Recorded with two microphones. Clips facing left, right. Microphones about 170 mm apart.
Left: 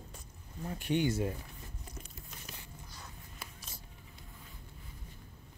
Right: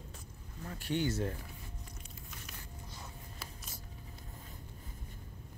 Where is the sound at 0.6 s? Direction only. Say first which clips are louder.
Left 3 dB; 15° left (ahead or behind).